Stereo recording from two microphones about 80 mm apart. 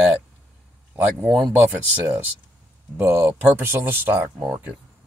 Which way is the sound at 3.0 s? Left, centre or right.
Right.